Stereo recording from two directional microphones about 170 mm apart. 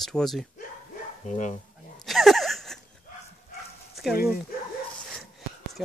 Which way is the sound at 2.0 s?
Centre (ahead or behind).